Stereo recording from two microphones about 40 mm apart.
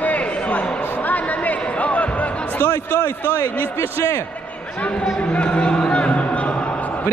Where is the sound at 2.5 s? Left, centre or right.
Left.